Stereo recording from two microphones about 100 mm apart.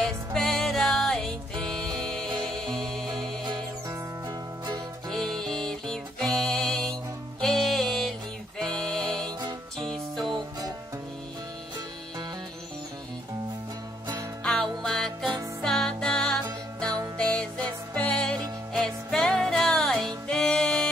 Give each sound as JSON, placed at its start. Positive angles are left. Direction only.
{"t": 0.0, "sound": "music", "side_deg": 5}
{"t": 4.3, "sound": "music", "side_deg": -40}
{"t": 5.1, "sound": "music", "side_deg": 5}
{"t": 10.2, "sound": "music", "side_deg": -45}
{"t": 14.4, "sound": "music", "side_deg": 5}